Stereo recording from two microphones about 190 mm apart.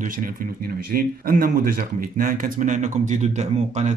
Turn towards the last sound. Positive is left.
turn(degrees=-35)  # may be behind; listen again after turning